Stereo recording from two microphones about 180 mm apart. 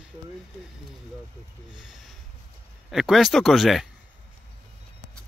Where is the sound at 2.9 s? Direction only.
Centre (ahead or behind).